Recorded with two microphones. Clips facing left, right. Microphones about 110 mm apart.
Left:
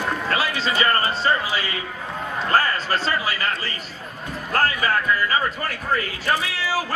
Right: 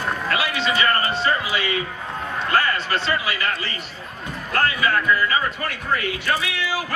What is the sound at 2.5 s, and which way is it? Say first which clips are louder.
A man's voice: left 1 dB; 40° left (ahead or behind).